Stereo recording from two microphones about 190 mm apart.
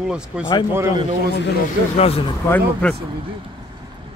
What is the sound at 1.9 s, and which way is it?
Speech, 35° left (ahead or behind).